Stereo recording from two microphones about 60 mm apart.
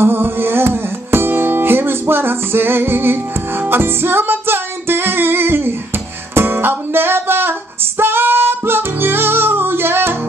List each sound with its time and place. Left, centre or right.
0.0 s music: right